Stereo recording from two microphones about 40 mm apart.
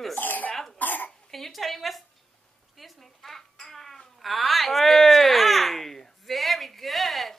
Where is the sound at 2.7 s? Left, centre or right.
Centre.